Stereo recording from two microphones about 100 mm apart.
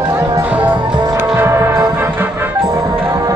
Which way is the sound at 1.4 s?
25° right (ahead or behind).